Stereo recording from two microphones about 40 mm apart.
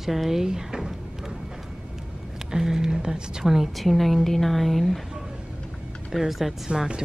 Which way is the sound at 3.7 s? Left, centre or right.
Centre.